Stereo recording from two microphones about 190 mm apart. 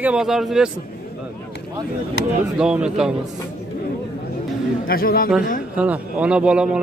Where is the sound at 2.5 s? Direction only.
5° right (ahead or behind).